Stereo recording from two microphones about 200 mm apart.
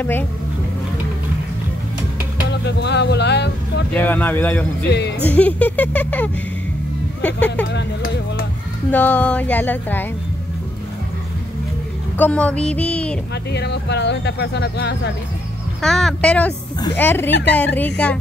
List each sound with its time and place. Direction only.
2.6 s speech: 60° left (ahead or behind)
3.9 s speech: 10° left (ahead or behind)
7.7 s music: 45° left (ahead or behind)
8.9 s speech: 10° left (ahead or behind)
12.2 s a sound: 5° left (ahead or behind)
13.5 s speech: 55° left (ahead or behind)
15.8 s a sound: centre (ahead or behind)
16.8 s speech: 10° left (ahead or behind)